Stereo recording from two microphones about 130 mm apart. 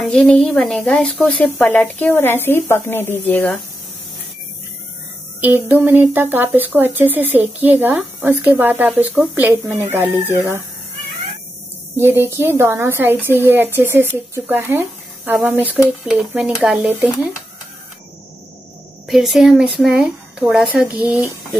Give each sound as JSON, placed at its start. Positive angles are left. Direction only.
{"t": 0.0, "sound": "a woman's voice", "side_deg": 5}
{"t": 5.4, "sound": "speech", "side_deg": -15}
{"t": 12.0, "sound": "speech", "side_deg": -20}
{"t": 19.0, "sound": "a woman's voice", "side_deg": 0}